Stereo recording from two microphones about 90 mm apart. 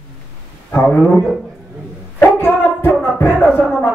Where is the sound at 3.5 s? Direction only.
15° right (ahead or behind).